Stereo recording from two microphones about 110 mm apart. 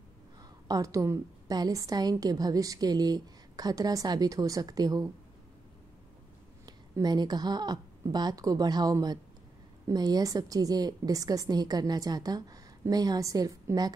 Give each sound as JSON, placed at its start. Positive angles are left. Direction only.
{"t": 0.4, "sound": "a sound", "side_deg": -35}
{"t": 1.5, "sound": "a woman's voice", "side_deg": -35}
{"t": 6.6, "sound": "a woman's voice", "side_deg": -40}